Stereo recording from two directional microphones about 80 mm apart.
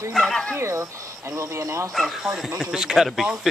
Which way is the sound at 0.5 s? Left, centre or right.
Right.